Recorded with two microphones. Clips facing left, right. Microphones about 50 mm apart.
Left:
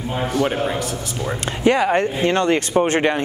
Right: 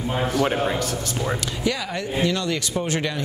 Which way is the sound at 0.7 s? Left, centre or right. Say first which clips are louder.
Left 1 dB; centre.